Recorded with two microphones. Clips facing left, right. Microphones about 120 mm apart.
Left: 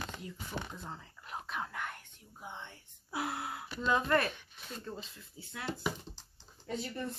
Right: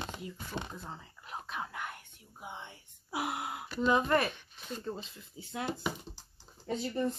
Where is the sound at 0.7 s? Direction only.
5° right (ahead or behind).